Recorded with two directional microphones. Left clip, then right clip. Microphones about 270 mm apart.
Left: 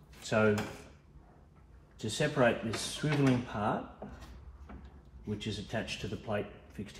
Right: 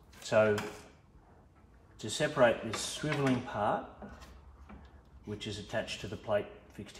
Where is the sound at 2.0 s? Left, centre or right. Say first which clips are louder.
Right 2 dB; centre.